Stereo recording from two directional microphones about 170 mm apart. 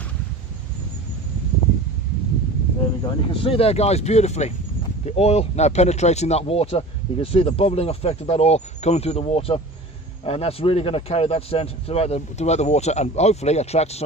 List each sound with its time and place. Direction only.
3.0 s speech: 30° left (ahead or behind)